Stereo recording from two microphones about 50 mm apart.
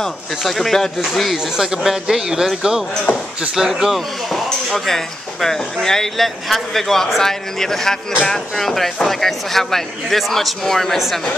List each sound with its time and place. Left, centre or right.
0.4 s speech: centre
1.3 s speech: centre
3.1 s speech: left
3.5 s speech: centre
4.6 s speech: centre